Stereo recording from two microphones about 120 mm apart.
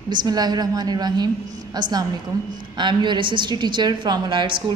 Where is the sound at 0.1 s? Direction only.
35° right (ahead or behind).